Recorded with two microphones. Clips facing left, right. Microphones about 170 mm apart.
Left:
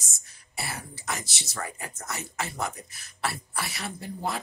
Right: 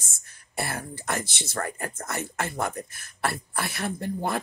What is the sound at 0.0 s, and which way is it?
Speech, 55° right (ahead or behind).